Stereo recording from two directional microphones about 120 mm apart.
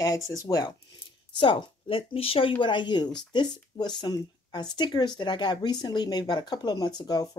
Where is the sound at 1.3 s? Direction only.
45° left (ahead or behind).